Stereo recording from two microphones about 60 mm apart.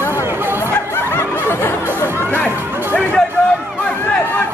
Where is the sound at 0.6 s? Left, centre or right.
Left.